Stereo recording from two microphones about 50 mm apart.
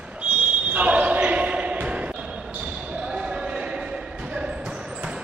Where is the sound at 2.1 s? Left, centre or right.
Centre.